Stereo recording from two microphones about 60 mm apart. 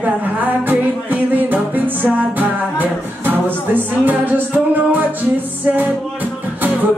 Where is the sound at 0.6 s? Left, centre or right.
Right.